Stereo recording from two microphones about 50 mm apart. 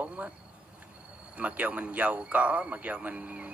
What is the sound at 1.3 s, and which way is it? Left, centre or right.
A man's voice, right.